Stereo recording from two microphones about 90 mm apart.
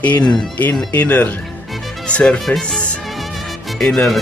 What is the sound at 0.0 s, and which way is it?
Speech, 15° left (ahead or behind).